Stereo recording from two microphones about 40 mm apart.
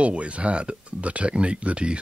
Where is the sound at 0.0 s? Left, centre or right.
Right.